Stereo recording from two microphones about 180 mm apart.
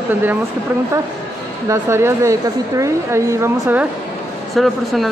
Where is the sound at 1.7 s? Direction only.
15° right (ahead or behind).